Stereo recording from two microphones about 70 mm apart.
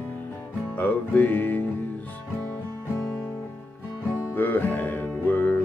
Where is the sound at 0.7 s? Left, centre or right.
Left.